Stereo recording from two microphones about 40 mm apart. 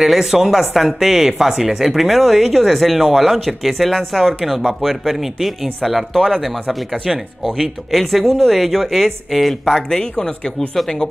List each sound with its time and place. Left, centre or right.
0.0 s speech: centre
1.9 s speech: centre
9.8 s speech: centre